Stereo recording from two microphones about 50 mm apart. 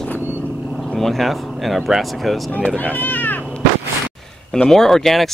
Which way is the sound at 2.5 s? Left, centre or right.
Left.